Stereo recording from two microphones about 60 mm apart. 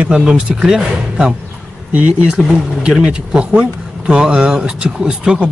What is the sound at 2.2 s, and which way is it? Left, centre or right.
Speech, centre.